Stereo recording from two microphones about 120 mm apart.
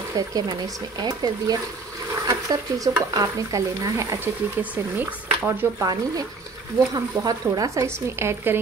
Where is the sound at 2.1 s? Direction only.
30° right (ahead or behind).